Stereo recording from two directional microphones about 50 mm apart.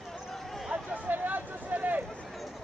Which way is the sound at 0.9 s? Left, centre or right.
Right.